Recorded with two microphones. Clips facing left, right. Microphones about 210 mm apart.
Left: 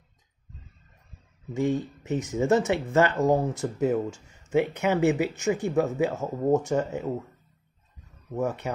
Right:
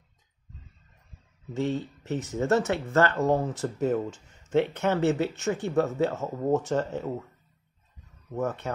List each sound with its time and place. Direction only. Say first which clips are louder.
1.5 s speech: left 3 dB; 15° left (ahead or behind)
8.4 s speech: left 1 dB; 15° left (ahead or behind)